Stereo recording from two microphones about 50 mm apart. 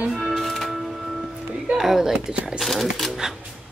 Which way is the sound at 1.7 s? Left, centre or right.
Centre.